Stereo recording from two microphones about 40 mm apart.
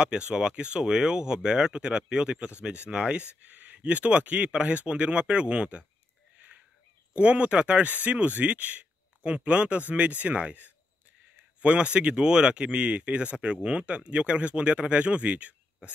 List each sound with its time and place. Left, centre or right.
0.0 s speech: right
3.3 s speech: right
7.2 s speech: right